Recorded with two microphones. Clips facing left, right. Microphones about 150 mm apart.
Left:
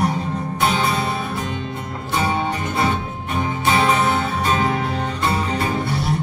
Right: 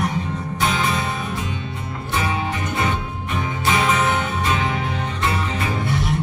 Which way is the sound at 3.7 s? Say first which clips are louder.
Left 2 dB; 35° left (ahead or behind).